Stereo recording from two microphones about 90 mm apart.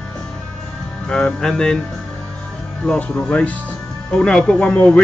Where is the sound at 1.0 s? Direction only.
5° left (ahead or behind).